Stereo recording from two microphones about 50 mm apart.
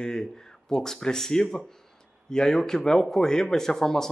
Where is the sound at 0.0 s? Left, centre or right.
Centre.